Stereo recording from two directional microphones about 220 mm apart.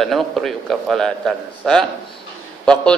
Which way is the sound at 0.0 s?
Centre (ahead or behind).